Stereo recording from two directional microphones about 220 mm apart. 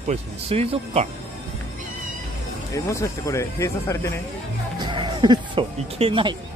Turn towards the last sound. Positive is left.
turn(degrees=-25)  # may be behind; listen again after turning